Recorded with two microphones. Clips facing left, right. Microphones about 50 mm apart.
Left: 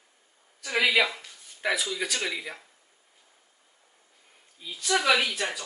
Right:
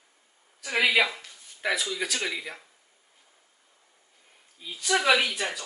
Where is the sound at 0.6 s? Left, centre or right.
Centre.